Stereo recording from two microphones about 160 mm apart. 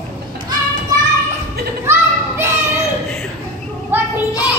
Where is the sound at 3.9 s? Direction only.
15° right (ahead or behind).